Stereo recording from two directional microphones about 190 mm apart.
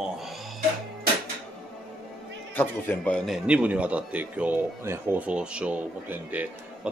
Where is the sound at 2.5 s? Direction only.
10° left (ahead or behind).